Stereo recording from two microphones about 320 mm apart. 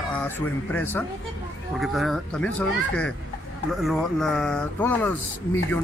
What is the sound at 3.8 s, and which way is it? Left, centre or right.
Speech, centre.